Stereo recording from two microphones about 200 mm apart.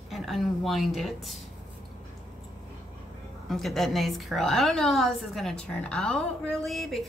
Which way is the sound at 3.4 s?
Centre (ahead or behind).